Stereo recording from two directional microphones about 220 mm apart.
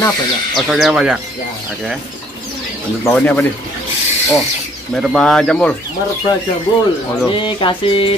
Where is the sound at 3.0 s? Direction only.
10° left (ahead or behind).